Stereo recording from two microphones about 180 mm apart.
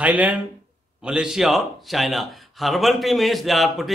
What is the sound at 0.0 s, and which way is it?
A man's voice, 10° right (ahead or behind).